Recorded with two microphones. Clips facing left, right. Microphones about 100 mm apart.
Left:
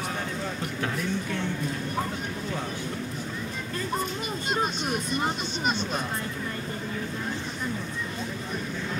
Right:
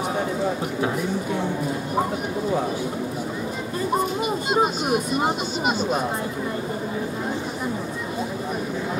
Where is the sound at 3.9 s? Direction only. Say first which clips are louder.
Right 9 dB; 10° right (ahead or behind).